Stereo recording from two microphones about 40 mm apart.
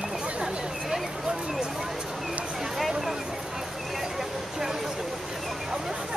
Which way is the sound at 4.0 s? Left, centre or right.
Centre.